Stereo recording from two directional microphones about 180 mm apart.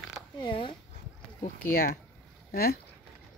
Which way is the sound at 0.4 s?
25° left (ahead or behind).